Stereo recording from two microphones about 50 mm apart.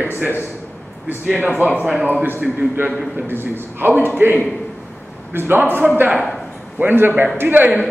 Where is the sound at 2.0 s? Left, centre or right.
Right.